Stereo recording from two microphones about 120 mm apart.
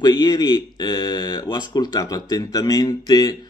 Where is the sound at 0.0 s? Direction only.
35° left (ahead or behind).